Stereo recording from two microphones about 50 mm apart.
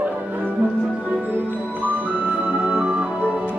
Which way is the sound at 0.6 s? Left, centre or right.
Centre.